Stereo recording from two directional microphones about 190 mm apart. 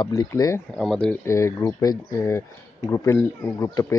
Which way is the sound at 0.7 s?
5° left (ahead or behind).